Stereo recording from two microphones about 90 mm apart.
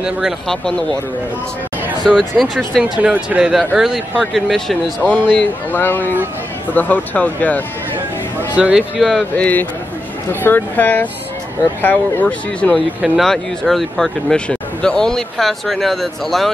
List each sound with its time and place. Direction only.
0.5 s speech: 5° left (ahead or behind)
2.0 s speech: 5° left (ahead or behind)
2.8 s speech: 10° right (ahead or behind)
5.1 s speech: 15° left (ahead or behind)
8.5 s speech: 10° right (ahead or behind)
9.4 s speech: 20° left (ahead or behind)
13.0 s speech: centre (ahead or behind)